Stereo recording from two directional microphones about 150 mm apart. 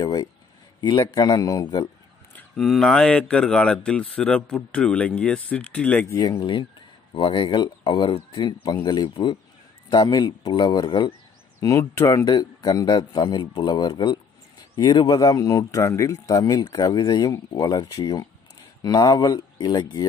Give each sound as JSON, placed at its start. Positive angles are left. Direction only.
{"t": 0.0, "sound": "speech", "side_deg": 25}
{"t": 2.3, "sound": "speech", "side_deg": 0}
{"t": 6.0, "sound": "speech", "side_deg": 25}
{"t": 11.6, "sound": "speech", "side_deg": 20}